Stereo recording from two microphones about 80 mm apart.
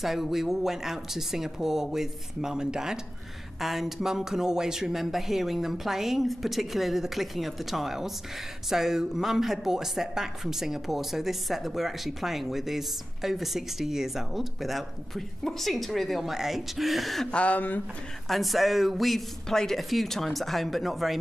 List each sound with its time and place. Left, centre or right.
0.0 s speech: centre
17.3 s speech: centre
18.3 s speech: centre